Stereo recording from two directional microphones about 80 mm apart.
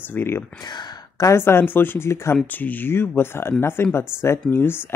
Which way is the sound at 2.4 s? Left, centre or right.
Left.